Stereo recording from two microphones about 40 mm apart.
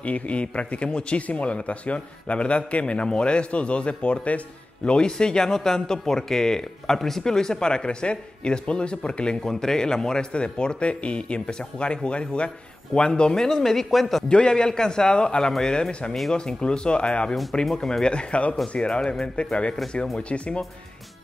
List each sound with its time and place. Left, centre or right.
0.0 s a man's voice: left
9.4 s a man's voice: centre
14.3 s a man's voice: left
17.6 s speech: centre
18.1 s a man's voice: left
18.8 s a man's voice: left